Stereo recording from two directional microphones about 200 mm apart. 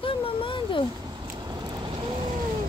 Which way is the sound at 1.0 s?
20° right (ahead or behind).